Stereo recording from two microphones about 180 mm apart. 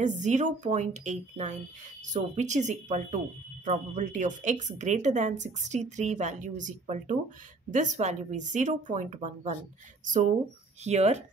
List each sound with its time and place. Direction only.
0.0 s speech: 40° right (ahead or behind)
10.8 s speech: 40° right (ahead or behind)